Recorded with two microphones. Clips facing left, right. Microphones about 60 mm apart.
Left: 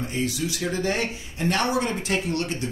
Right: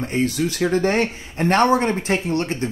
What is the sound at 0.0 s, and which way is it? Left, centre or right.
Speech, right.